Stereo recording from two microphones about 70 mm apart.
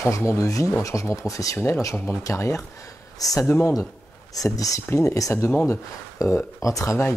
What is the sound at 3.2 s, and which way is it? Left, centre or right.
Speech, left.